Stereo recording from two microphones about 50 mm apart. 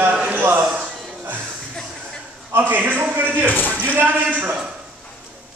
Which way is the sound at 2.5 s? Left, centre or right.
Right.